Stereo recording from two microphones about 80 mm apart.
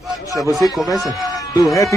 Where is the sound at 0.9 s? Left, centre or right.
Left.